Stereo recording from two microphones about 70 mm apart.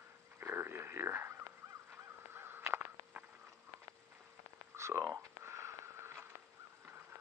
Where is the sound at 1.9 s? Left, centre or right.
Right.